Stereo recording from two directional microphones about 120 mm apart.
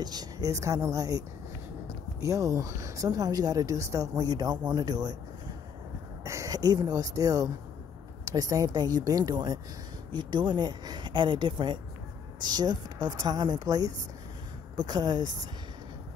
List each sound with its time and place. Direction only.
0.0 s speech: 35° right (ahead or behind)
6.2 s speech: 25° right (ahead or behind)